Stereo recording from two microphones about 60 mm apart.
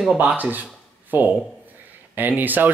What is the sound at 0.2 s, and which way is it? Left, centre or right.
Speech, right.